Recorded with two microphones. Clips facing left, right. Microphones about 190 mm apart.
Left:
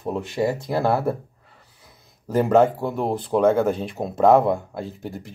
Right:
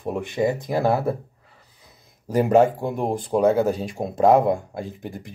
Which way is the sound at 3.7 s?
40° right (ahead or behind).